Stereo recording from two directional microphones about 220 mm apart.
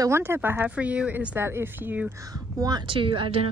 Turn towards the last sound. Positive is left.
turn(degrees=-25)  # may be behind; listen again after turning